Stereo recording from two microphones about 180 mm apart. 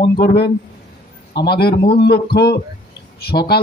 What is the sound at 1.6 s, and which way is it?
A man's voice, 60° left (ahead or behind).